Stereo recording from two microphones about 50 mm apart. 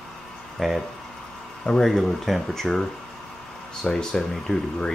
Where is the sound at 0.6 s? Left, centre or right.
Centre.